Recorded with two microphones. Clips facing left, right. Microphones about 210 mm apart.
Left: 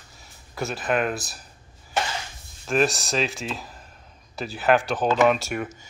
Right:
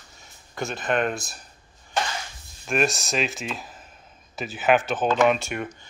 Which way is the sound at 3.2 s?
20° right (ahead or behind).